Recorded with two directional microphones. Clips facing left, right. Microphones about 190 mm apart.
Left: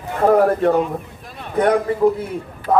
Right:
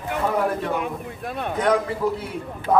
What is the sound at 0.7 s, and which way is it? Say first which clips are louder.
Speech: left 7 dB; 60° right (ahead or behind).